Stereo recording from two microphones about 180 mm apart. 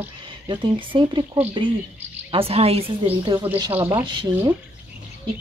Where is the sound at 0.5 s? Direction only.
25° right (ahead or behind).